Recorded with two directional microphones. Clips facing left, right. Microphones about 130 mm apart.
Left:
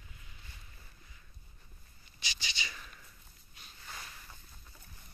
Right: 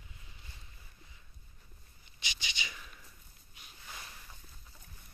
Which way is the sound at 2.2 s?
15° right (ahead or behind).